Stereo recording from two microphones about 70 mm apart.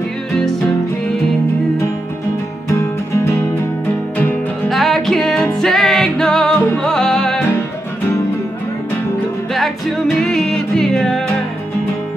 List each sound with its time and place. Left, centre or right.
2.7 s music: left
4.6 s music: centre
9.5 s music: centre